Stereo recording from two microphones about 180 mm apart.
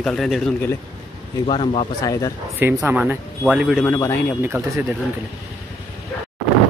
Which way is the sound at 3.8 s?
10° left (ahead or behind).